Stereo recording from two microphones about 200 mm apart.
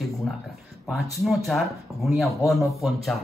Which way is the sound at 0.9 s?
Centre (ahead or behind).